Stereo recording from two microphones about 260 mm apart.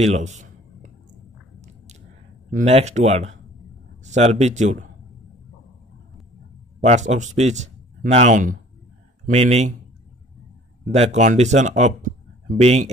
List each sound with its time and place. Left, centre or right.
0.0 s a sound: right
2.5 s speech: right
6.8 s speech: right
10.9 s speech: right